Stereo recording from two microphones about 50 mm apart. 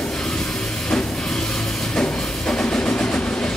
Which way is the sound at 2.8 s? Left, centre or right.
Left.